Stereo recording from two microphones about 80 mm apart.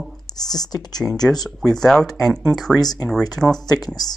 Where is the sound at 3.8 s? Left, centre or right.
Left.